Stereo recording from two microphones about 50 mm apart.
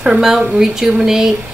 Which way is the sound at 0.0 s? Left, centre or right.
Centre.